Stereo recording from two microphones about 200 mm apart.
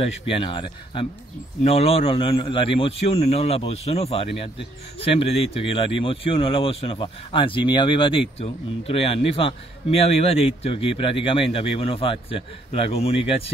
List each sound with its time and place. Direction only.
0.0 s speech: 25° left (ahead or behind)